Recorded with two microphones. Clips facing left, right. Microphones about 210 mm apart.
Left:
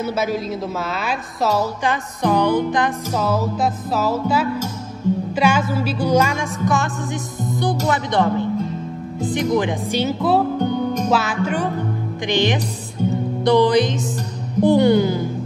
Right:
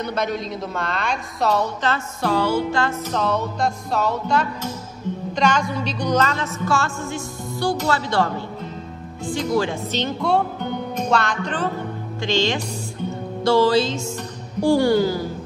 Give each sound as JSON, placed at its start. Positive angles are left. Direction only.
{"t": 0.0, "sound": "a woman's voice", "side_deg": 5}
{"t": 1.8, "sound": "a woman's voice", "side_deg": 15}
{"t": 3.2, "sound": "a woman's voice", "side_deg": 5}
{"t": 7.9, "sound": "music", "side_deg": 20}
{"t": 9.3, "sound": "a woman's voice", "side_deg": 20}
{"t": 13.0, "sound": "music", "side_deg": 40}
{"t": 13.4, "sound": "music", "side_deg": 20}